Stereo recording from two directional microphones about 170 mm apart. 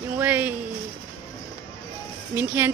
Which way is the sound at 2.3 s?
15° right (ahead or behind).